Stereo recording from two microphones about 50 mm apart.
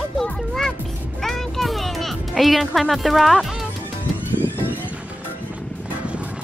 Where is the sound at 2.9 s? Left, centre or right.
Centre.